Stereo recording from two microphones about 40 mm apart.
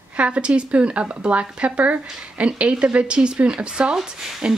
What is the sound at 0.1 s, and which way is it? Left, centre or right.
Speech, right.